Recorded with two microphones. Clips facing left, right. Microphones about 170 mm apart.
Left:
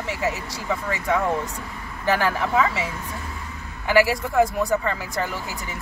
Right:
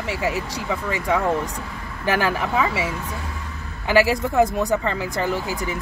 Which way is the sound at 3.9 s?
20° right (ahead or behind).